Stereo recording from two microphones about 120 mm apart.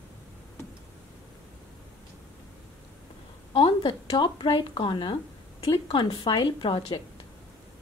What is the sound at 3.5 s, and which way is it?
A woman's voice, 45° left (ahead or behind).